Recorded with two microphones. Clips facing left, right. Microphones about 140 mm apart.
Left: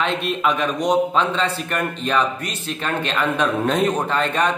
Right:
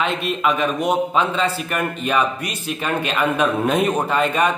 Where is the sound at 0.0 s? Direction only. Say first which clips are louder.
Even; centre (ahead or behind).